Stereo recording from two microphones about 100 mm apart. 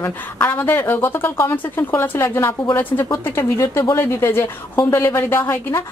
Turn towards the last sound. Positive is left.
turn(degrees=25)  # may be behind; listen again after turning